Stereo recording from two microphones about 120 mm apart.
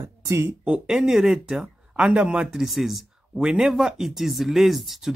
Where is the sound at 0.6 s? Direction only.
10° right (ahead or behind).